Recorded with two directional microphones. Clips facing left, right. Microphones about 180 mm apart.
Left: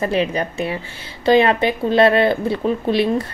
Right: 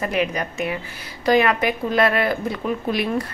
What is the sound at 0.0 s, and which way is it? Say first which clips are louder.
A woman's voice: left 4 dB; 30° left (ahead or behind).